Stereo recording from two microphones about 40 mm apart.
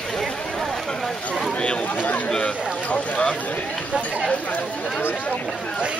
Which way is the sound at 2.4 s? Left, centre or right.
Left.